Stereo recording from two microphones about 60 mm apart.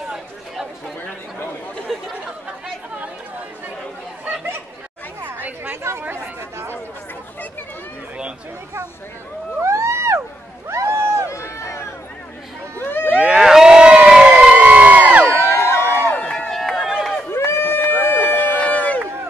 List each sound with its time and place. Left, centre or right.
1.9 s chatter: centre
5.2 s chatter: right
5.9 s chatter: right
9.6 s a sound: right
11.2 s run: left
13.1 s crowd: centre
14.4 s crowd: right
15.6 s a sound: left
16.2 s a sound: centre
17.3 s run: left